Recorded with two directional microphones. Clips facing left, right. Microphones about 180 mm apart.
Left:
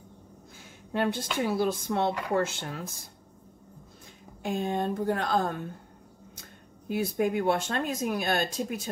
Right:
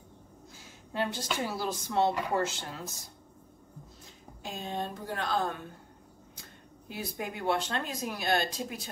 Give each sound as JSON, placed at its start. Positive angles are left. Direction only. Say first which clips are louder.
{"t": 0.6, "sound": "speech", "louder": "left 4 dB", "side_deg": 55}
{"t": 4.4, "sound": "speech", "louder": "left 7 dB", "side_deg": 55}
{"t": 6.9, "sound": "speech", "louder": "left 11 dB", "side_deg": 50}